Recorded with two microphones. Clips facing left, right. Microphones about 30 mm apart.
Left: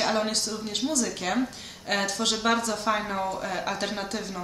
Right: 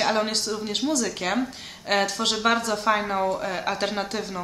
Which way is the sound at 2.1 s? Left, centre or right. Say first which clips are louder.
Right 2 dB; right.